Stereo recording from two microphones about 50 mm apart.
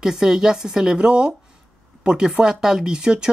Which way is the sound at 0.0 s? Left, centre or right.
Centre.